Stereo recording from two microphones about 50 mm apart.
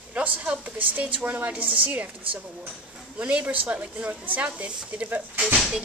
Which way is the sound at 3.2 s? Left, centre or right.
Right.